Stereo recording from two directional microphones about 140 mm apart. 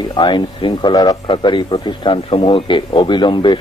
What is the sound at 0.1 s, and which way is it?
Speech, 35° left (ahead or behind).